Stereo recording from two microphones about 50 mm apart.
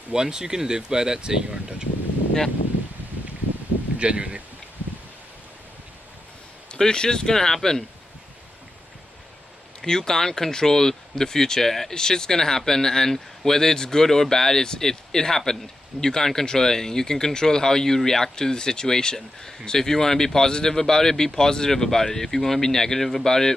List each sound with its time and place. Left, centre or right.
0.1 s speech: centre
4.0 s speech: right
6.7 s speech: centre
9.8 s speech: centre